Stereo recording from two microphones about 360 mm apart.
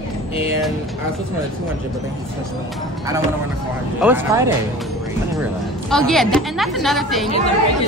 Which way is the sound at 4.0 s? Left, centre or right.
Centre.